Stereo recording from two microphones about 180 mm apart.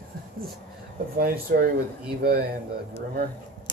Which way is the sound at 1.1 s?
55° right (ahead or behind).